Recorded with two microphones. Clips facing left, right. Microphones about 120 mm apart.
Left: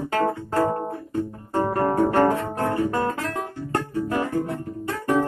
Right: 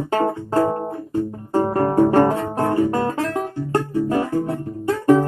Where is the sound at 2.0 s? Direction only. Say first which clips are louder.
Right 3 dB; 30° right (ahead or behind).